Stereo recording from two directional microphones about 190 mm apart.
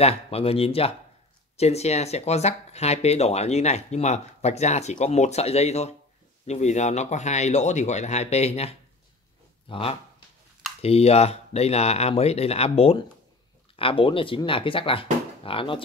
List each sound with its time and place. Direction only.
0.0 s speech: 30° left (ahead or behind)